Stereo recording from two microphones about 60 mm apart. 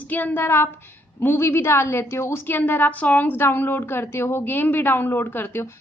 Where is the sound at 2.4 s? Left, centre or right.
Left.